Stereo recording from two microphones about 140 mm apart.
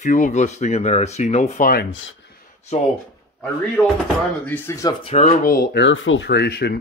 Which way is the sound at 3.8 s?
5° left (ahead or behind).